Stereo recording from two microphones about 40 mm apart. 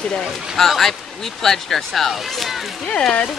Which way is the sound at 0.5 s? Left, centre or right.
Centre.